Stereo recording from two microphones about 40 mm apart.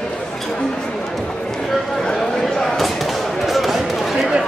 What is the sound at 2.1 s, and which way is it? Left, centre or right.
Basketball bounce, centre.